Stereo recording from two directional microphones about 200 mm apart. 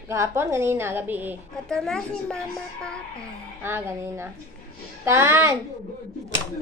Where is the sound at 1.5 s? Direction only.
5° left (ahead or behind).